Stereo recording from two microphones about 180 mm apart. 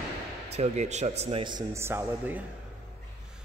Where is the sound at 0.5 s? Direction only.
35° right (ahead or behind); by 2.4 s 10° right (ahead or behind).